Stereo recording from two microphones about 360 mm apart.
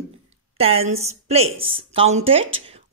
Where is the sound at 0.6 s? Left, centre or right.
Centre.